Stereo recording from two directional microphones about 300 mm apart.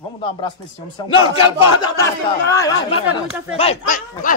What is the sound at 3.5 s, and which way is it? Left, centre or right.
Speech, left.